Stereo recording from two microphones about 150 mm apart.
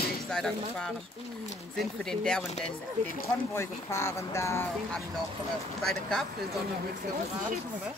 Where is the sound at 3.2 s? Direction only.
20° left (ahead or behind).